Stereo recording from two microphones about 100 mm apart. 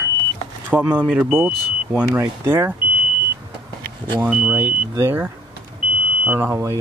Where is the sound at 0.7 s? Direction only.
15° right (ahead or behind).